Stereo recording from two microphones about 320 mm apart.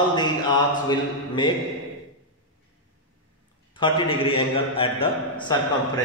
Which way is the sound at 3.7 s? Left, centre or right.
Centre.